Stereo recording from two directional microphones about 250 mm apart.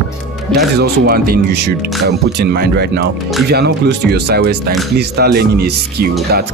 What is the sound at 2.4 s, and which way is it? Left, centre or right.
Speech, right.